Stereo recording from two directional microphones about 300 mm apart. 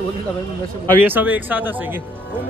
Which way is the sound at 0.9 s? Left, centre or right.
Centre.